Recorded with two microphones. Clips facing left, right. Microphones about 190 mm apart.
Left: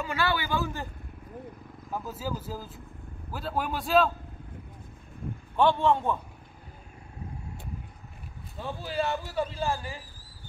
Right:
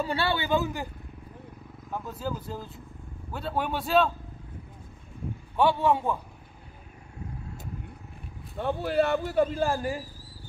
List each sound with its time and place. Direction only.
0.0 s a man's voice: 30° right (ahead or behind)
1.9 s speech: 5° left (ahead or behind)
5.6 s a man's voice: 5° right (ahead or behind)
8.5 s speech: 65° right (ahead or behind)